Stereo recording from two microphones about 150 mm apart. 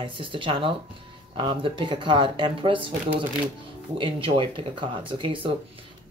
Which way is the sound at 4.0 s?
35° right (ahead or behind).